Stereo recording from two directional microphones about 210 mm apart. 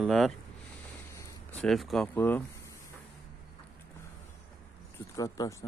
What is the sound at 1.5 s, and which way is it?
Speech, 5° left (ahead or behind).